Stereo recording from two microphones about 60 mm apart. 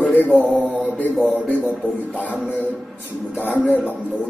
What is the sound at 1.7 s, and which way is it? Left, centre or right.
Music, left.